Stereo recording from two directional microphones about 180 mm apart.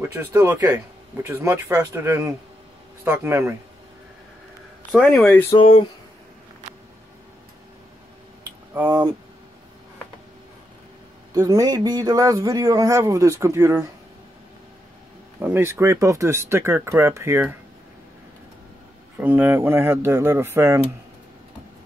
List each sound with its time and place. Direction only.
0.1 s a man's voice: 10° right (ahead or behind)
4.9 s speech: centre (ahead or behind)
5.5 s speech: 30° left (ahead or behind)
8.7 s a man's voice: 10° right (ahead or behind)
11.3 s a man's voice: 20° right (ahead or behind)
15.3 s a man's voice: 10° right (ahead or behind)
19.1 s a man's voice: 10° right (ahead or behind)